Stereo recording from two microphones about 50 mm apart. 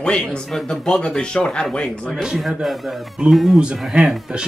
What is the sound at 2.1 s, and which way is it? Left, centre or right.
Speech, centre.